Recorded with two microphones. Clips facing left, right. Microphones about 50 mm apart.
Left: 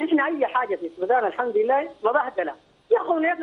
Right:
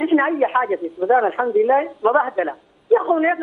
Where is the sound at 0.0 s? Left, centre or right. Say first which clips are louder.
Right 4 dB; centre.